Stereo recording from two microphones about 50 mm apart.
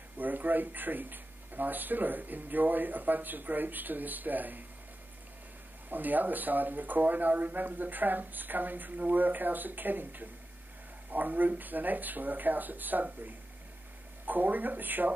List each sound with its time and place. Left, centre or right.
0.2 s speech: right
5.9 s speech: right